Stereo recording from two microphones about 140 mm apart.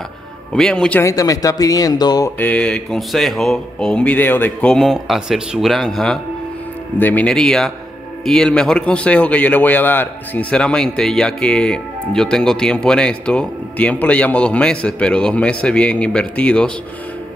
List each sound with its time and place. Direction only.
0.5 s speech: 5° left (ahead or behind)
1.0 s speech: 25° left (ahead or behind)
2.3 s a man's voice: 10° left (ahead or behind)